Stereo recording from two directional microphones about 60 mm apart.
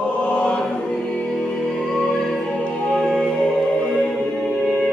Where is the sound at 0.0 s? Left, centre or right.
Left.